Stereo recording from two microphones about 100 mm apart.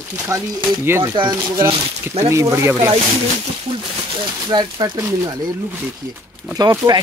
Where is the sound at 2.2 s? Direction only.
30° right (ahead or behind).